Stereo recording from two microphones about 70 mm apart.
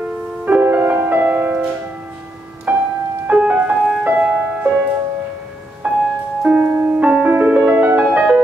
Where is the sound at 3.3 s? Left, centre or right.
Centre.